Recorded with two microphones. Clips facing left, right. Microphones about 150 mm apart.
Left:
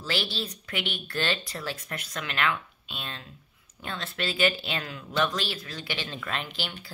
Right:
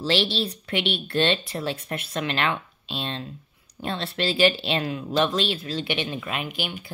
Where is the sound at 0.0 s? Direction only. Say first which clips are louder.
Right 8 dB; 25° right (ahead or behind).